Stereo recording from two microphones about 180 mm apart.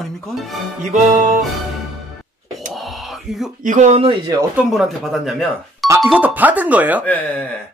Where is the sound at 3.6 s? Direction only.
40° right (ahead or behind); by 4.4 s 25° right (ahead or behind).